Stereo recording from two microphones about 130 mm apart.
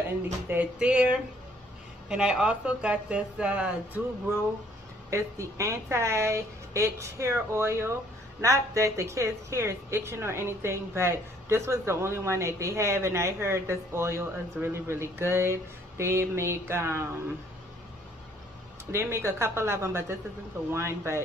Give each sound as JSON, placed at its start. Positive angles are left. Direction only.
{"t": 0.5, "sound": "speech", "side_deg": -10}
{"t": 2.0, "sound": "speech", "side_deg": -5}
{"t": 5.1, "sound": "a woman's voice", "side_deg": -20}
{"t": 18.9, "sound": "a woman's voice", "side_deg": -20}